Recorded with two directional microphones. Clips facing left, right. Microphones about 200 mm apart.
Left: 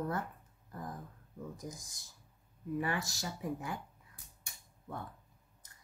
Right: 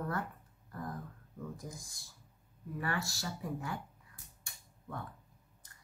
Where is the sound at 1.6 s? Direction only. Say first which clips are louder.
Left 1 dB; 20° left (ahead or behind).